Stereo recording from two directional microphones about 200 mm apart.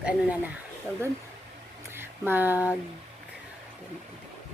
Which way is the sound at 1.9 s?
10° right (ahead or behind).